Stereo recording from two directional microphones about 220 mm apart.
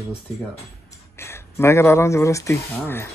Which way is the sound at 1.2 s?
10° left (ahead or behind).